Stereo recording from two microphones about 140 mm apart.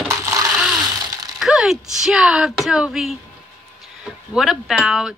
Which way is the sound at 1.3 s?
5° right (ahead or behind).